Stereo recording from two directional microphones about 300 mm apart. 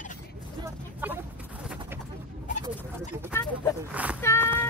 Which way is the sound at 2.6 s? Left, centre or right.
Centre.